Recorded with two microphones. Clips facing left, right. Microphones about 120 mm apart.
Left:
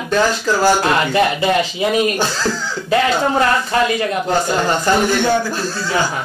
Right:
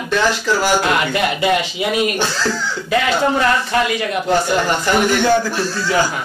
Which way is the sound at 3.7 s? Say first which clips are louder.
Left 3 dB; 30° left (ahead or behind).